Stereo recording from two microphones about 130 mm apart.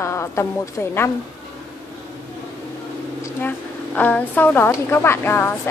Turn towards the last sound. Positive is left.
turn(degrees=15)  # may be behind; listen again after turning